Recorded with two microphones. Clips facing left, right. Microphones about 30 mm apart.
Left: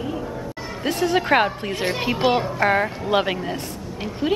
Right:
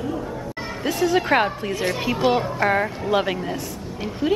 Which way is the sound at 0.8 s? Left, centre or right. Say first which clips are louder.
Even; centre.